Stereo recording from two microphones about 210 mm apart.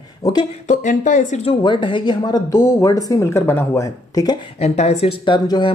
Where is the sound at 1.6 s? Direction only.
20° left (ahead or behind).